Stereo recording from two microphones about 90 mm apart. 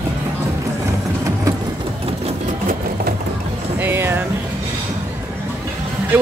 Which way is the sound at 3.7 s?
20° right (ahead or behind).